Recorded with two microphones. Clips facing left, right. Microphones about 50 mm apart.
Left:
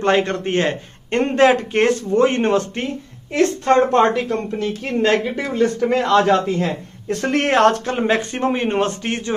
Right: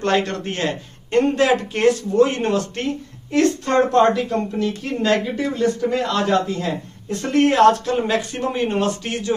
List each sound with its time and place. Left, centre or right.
0.0 s a man's voice: left
5.8 s a man's voice: left
7.1 s speech: left
7.9 s a man's voice: left